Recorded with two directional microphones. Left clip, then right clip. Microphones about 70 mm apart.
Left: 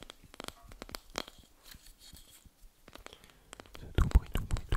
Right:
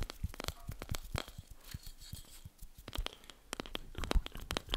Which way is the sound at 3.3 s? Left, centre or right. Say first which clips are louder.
Right 7 dB; right.